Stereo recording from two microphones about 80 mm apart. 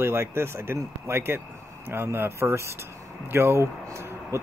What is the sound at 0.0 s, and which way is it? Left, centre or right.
Speech, right.